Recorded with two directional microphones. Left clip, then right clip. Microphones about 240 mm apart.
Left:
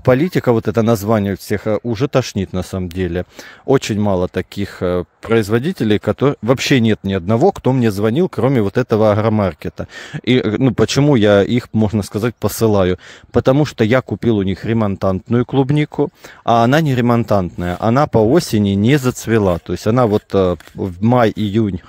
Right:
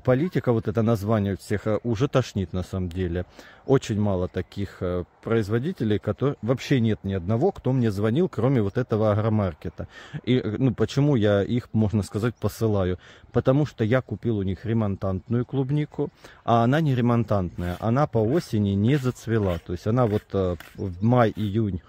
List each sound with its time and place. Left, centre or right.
0.0 s speech: left